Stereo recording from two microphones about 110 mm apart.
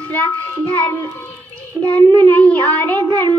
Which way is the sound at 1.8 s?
15° left (ahead or behind).